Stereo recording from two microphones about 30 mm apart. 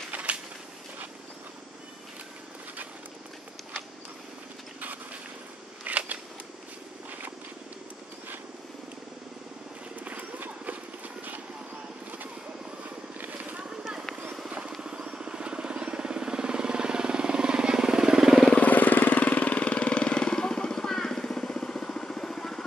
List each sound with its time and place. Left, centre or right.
0.1 s a sound: right
4.7 s vehicle: right
5.9 s crackle: right
7.1 s purr: right
13.2 s vehicle: right
14.7 s vehicle: right
18.6 s vehicle: left; by 22.7 s centre